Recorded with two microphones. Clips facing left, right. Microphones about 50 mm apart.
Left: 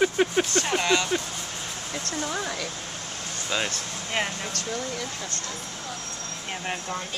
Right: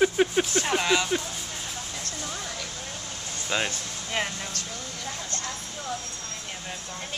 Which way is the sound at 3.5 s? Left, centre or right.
Centre.